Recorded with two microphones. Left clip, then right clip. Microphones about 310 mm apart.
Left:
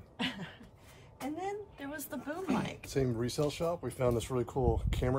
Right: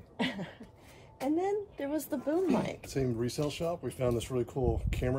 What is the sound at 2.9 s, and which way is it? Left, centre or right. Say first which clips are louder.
Speech: left 1 dB; centre.